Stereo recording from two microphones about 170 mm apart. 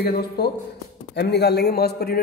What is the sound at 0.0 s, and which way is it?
Speech, 65° left (ahead or behind).